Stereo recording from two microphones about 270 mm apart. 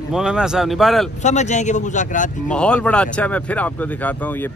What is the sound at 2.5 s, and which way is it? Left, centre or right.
Speech, centre.